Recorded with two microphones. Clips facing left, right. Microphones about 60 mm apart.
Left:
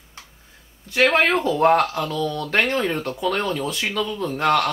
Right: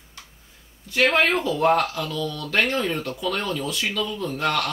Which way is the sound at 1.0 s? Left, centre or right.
Left.